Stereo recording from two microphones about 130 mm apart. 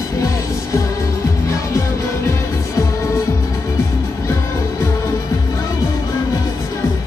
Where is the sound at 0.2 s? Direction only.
25° left (ahead or behind).